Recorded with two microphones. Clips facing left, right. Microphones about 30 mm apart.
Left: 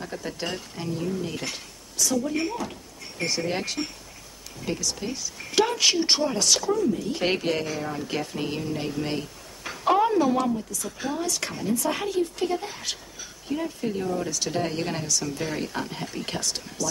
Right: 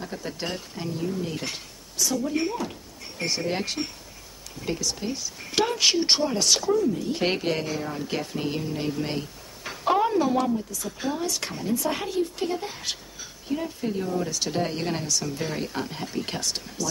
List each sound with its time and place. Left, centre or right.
0.0 s speech: centre
3.8 s speech: centre
4.6 s speech: right
7.8 s speech: centre
8.1 s speech: right
9.2 s a sound: centre
10.1 s speech: right
13.7 s speech: centre
14.3 s speech: right